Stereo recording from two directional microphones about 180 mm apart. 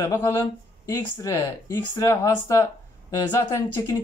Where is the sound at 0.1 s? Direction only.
15° left (ahead or behind).